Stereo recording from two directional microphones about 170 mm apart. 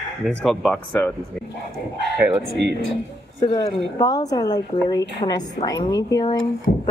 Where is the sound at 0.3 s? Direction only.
5° left (ahead or behind).